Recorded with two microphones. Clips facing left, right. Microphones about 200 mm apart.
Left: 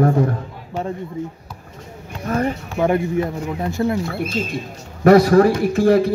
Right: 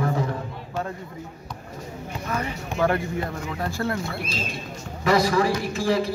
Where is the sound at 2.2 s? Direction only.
50° left (ahead or behind).